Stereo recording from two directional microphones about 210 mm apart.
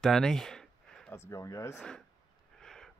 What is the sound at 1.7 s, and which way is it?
Speech, 5° left (ahead or behind).